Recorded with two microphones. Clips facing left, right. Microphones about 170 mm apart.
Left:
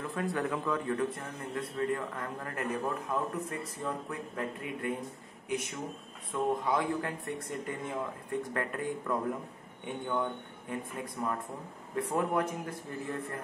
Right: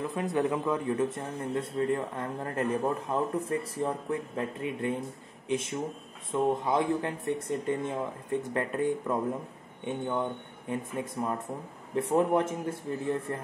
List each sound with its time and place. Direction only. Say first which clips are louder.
0.1 s a man's voice: right 3 dB; 20° right (ahead or behind)